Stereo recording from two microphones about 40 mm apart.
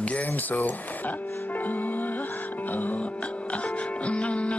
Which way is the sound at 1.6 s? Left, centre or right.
Left.